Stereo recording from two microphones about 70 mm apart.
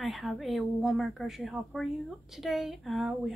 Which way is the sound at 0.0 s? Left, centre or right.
Centre.